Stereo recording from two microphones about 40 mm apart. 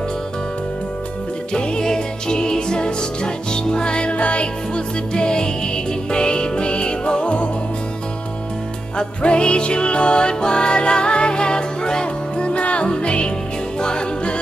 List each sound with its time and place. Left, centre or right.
1.5 s music: centre
8.9 s music: left